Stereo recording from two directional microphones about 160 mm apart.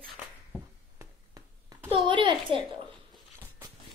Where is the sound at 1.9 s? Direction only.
30° right (ahead or behind).